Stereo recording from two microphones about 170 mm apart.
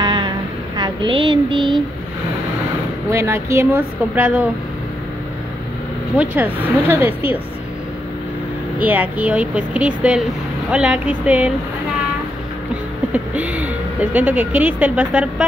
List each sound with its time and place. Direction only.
0.0 s a sound: 25° right (ahead or behind)
0.7 s child singing: 25° right (ahead or behind)
3.1 s speech: 15° right (ahead or behind)
6.3 s speech: 10° right (ahead or behind)
8.7 s speech: 10° right (ahead or behind)
13.1 s speech: 10° right (ahead or behind)